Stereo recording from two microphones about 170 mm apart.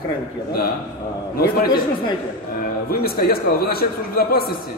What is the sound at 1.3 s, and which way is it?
Speech, 65° left (ahead or behind).